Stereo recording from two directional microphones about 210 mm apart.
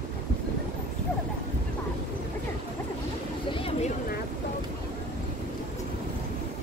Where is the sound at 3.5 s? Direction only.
25° left (ahead or behind).